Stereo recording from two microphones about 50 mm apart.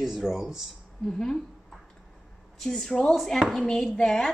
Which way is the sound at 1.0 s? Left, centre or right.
Centre.